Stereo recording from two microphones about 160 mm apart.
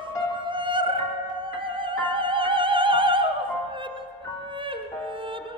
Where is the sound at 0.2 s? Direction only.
30° right (ahead or behind).